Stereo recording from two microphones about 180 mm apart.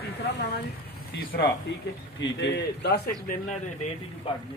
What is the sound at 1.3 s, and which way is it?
Speech, 55° left (ahead or behind).